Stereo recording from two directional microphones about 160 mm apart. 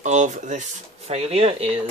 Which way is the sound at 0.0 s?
50° right (ahead or behind).